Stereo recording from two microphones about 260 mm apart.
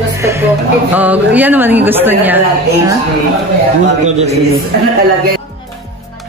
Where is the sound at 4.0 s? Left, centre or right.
Right.